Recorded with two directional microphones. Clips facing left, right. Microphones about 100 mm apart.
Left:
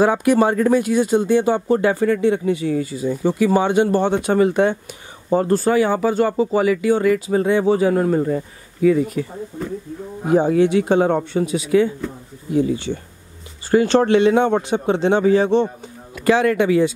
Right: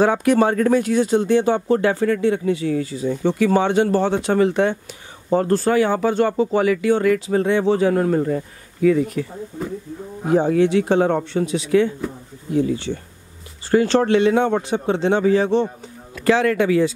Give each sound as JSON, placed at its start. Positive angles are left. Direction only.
{"t": 0.0, "sound": "speech", "side_deg": 5}
{"t": 10.2, "sound": "speech", "side_deg": 10}